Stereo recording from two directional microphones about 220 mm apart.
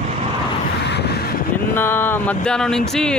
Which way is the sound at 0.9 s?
50° left (ahead or behind).